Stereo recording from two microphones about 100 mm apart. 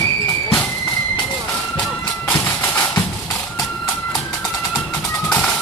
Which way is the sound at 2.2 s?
20° left (ahead or behind).